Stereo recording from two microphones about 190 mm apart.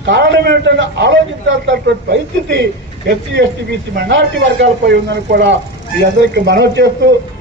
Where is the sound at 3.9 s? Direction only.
65° right (ahead or behind).